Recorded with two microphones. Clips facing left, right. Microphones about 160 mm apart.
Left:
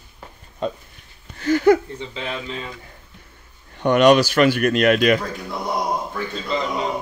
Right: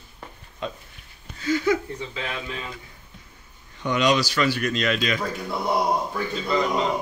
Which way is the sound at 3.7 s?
60° left (ahead or behind).